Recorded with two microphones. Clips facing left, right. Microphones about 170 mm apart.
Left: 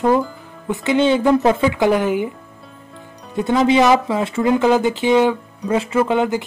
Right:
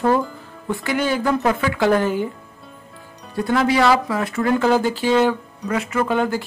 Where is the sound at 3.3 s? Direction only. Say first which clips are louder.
Left 3 dB; 20° left (ahead or behind).